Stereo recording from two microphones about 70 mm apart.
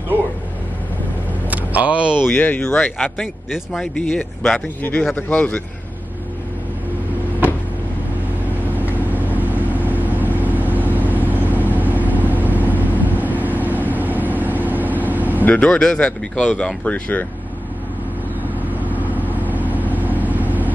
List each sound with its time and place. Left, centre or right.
1.5 s vehicle: right
2.2 s speech: left
8.7 s vehicle: right
15.4 s speech: centre
18.9 s vehicle: right